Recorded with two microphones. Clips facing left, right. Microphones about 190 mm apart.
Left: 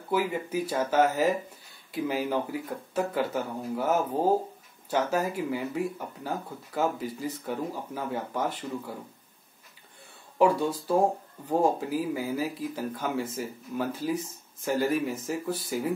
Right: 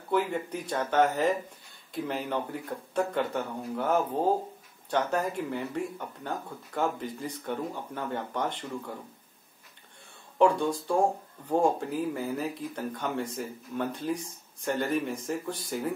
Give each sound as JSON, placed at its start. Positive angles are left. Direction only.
{"t": 0.1, "sound": "speech", "side_deg": 5}
{"t": 10.4, "sound": "speech", "side_deg": 5}